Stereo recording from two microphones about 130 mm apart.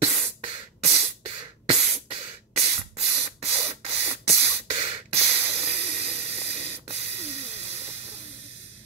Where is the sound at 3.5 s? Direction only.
20° right (ahead or behind).